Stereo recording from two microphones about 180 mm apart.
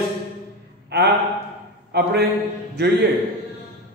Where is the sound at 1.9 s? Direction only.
65° right (ahead or behind).